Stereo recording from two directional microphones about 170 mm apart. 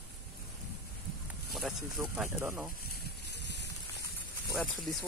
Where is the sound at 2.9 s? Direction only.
85° left.